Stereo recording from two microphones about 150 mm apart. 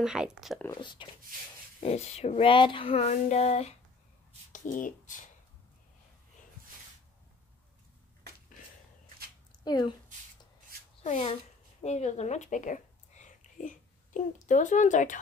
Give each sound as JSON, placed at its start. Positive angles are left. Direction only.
{"t": 0.0, "sound": "speech", "side_deg": -5}
{"t": 0.7, "sound": "speech", "side_deg": 35}
{"t": 1.8, "sound": "a sound", "side_deg": 45}
{"t": 4.5, "sound": "speech", "side_deg": 60}
{"t": 9.7, "sound": "speech", "side_deg": 30}
{"t": 11.1, "sound": "a sound", "side_deg": 45}
{"t": 11.8, "sound": "speech", "side_deg": 50}